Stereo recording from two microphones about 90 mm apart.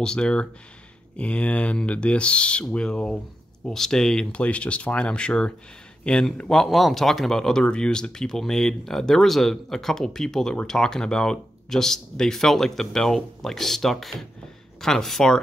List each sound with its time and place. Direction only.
0.0 s speech: 10° left (ahead or behind)